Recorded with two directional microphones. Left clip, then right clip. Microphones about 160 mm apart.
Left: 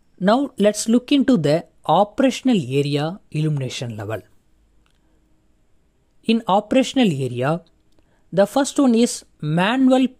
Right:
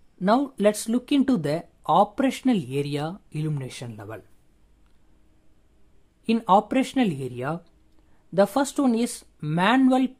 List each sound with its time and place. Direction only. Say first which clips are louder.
0.2 s speech: left 4 dB; 30° left (ahead or behind)
6.2 s speech: left 1 dB; 30° left (ahead or behind)